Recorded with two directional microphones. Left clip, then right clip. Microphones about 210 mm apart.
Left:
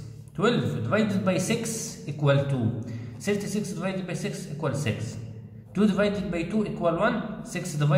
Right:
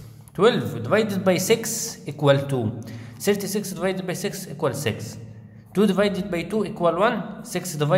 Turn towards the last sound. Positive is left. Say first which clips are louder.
# right 6 dB
turn(degrees=-40)  # may be behind; listen again after turning